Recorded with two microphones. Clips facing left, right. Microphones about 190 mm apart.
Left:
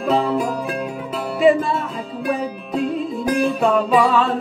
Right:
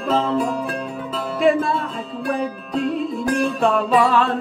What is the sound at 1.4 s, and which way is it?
Music, centre (ahead or behind).